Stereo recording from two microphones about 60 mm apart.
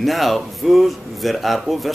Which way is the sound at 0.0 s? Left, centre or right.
Centre.